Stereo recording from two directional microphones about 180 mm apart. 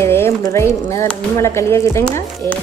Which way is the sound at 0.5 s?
15° left (ahead or behind).